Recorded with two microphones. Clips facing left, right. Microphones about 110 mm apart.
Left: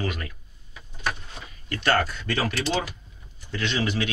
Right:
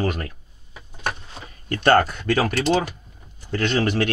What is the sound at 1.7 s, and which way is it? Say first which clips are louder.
Speech: right 7 dB; 50° right (ahead or behind).